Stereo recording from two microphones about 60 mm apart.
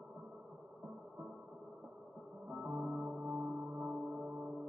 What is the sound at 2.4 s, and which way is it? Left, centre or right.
Music, centre.